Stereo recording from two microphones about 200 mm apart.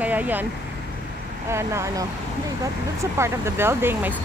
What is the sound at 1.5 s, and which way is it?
Speech, 15° right (ahead or behind).